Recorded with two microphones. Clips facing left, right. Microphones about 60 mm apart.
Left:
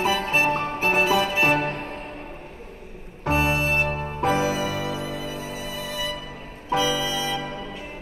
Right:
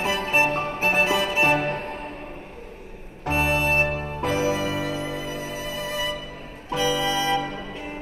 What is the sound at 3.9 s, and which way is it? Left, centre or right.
Music, left.